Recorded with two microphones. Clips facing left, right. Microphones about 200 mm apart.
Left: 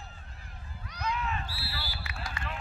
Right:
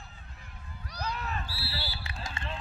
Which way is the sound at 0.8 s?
35° right (ahead or behind).